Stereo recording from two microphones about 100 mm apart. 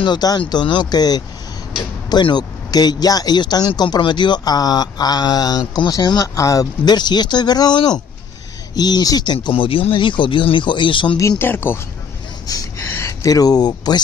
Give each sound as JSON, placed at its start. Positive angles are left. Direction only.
{"t": 0.0, "sound": "speech", "side_deg": 45}
{"t": 9.5, "sound": "speech", "side_deg": 65}
{"t": 11.1, "sound": "speech", "side_deg": 25}
{"t": 12.5, "sound": "speech", "side_deg": 40}